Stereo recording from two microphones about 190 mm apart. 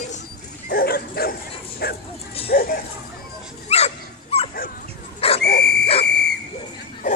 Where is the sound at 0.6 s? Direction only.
55° left (ahead or behind).